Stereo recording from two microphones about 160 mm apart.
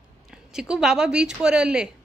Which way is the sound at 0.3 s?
5° right (ahead or behind).